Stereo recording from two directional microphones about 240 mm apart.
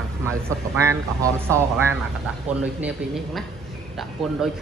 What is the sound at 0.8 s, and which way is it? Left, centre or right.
Speech, centre.